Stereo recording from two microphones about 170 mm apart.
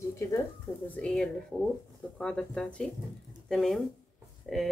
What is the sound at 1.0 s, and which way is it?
Speech, centre (ahead or behind).